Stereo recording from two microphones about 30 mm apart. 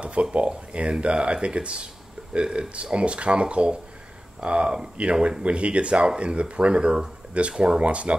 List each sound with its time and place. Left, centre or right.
0.0 s speech: right
5.4 s speech: right